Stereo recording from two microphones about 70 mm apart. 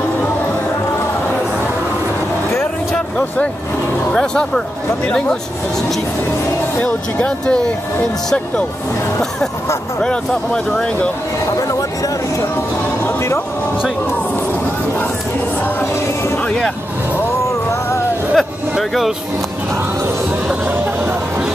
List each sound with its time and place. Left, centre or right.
4.1 s speech: centre
6.8 s speech: centre
10.0 s speech: centre
18.3 s music: centre